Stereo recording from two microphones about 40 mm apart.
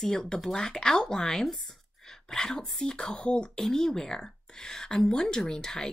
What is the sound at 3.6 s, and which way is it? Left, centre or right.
Speech, centre.